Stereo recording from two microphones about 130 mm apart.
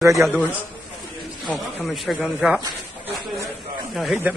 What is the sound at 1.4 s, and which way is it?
Speech, centre (ahead or behind).